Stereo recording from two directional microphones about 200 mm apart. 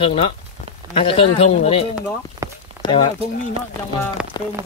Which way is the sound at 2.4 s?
15° right (ahead or behind).